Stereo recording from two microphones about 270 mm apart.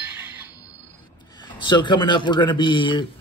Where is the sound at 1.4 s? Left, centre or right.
Centre.